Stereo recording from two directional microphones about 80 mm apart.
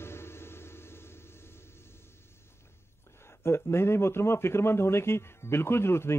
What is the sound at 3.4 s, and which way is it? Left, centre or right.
Speech, left.